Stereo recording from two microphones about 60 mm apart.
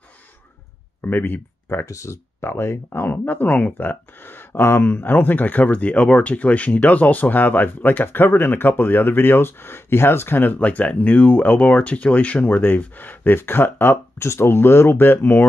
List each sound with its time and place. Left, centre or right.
1.0 s speech: left
1.9 s speech: left